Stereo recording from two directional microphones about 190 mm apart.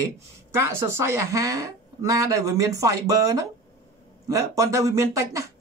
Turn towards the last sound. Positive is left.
turn(degrees=-15)  # may be behind; listen again after turning